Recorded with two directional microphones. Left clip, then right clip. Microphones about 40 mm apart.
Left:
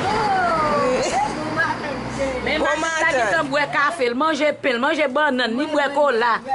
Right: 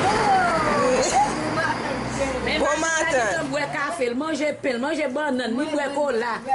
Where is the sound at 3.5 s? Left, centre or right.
Left.